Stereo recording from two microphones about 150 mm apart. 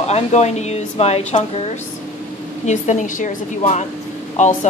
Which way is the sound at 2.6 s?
55° left (ahead or behind).